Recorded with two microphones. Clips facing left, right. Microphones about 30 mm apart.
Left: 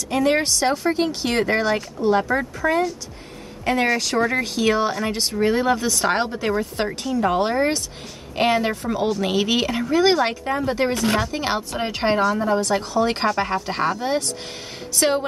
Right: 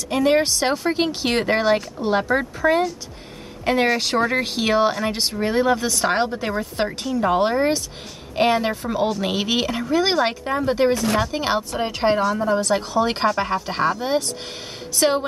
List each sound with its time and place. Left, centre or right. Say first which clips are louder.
0.1 s speech: right 1 dB; centre
0.6 s speech: even; right
5.3 s speech: left 1 dB; centre
11.7 s a woman's voice: even; centre
12.5 s speech: right 1 dB; centre